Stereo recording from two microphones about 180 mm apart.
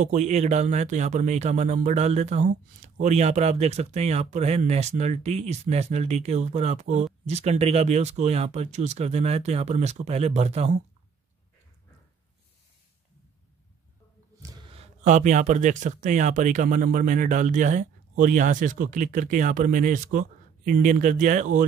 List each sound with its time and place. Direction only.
0.0 s speech: 40° right (ahead or behind)
14.4 s speech: 25° right (ahead or behind); by 21.6 s 45° right (ahead or behind)